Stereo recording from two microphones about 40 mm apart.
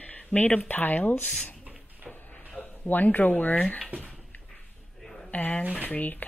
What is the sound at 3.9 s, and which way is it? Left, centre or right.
Speech, right.